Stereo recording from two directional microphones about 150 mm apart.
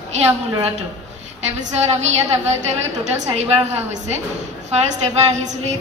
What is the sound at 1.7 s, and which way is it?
Speech, 50° right (ahead or behind).